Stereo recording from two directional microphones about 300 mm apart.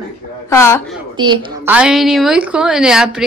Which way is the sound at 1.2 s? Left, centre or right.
Centre.